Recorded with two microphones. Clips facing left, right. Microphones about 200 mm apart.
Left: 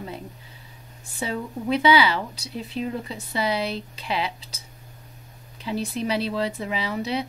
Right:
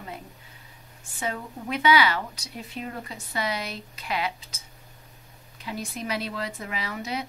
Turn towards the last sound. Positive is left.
turn(degrees=30)  # may be behind; listen again after turning